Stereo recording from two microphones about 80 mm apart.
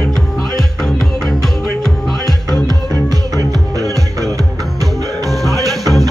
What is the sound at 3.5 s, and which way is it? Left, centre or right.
Music, right.